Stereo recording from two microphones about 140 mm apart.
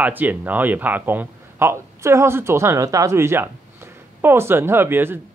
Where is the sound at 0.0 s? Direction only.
10° right (ahead or behind).